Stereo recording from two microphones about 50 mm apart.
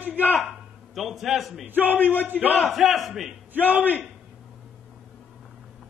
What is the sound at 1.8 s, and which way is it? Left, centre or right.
Speech, left.